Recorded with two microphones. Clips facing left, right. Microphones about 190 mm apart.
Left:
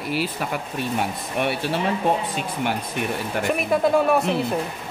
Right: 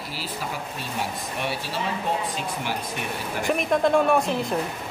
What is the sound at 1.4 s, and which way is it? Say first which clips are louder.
Speech: left 7 dB; 60° left (ahead or behind).